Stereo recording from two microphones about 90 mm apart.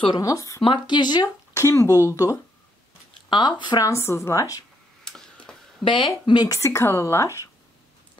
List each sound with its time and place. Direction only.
0.1 s speech: 40° left (ahead or behind)
0.6 s speech: 65° left (ahead or behind); by 2.3 s 40° left (ahead or behind)
3.3 s speech: 60° left (ahead or behind)
3.8 s speech: 30° left (ahead or behind)
5.0 s tick-tock: 10° left (ahead or behind)
5.9 s speech: 65° left (ahead or behind)
6.4 s speech: 35° left (ahead or behind)